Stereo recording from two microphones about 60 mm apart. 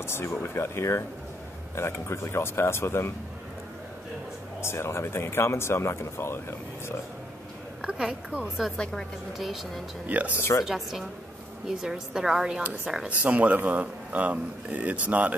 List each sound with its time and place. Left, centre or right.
0.0 s speech: left
4.6 s speech: left
8.0 s speech: centre
8.7 s a woman's voice: centre
9.4 s a woman's voice: centre
10.0 s speech: right
10.6 s a woman's voice: centre; by 15.3 s right